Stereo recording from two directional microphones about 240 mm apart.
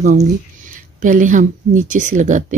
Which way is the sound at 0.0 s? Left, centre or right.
Right.